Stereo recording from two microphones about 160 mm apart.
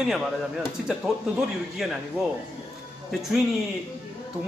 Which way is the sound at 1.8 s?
5° right (ahead or behind).